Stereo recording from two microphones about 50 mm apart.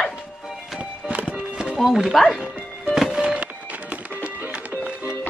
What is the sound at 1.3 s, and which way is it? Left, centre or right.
Music, centre.